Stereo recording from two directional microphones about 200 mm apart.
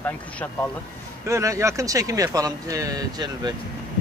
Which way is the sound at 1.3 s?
15° right (ahead or behind).